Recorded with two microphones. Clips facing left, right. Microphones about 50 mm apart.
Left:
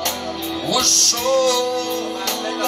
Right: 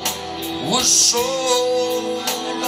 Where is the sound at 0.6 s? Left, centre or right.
Centre.